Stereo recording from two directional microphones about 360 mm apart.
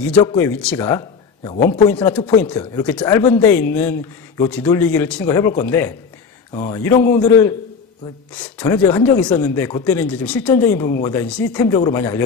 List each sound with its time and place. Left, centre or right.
0.0 s a man's voice: centre
6.5 s speech: centre
6.8 s speech: centre